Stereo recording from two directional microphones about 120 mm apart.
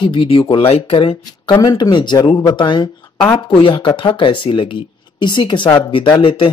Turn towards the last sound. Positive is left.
turn(degrees=45)  # may be behind; listen again after turning